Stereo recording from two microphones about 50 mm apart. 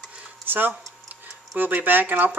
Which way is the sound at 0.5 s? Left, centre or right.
Right.